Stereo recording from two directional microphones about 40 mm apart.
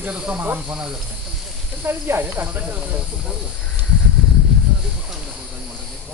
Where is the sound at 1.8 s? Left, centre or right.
Right.